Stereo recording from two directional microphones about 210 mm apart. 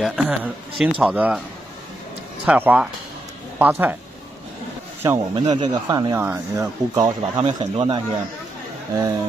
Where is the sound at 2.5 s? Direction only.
5° right (ahead or behind).